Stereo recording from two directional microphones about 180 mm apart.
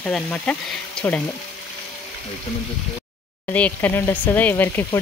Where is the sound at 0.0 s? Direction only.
5° left (ahead or behind).